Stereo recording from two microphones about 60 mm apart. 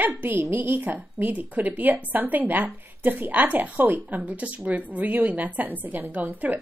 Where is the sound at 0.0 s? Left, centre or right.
Right.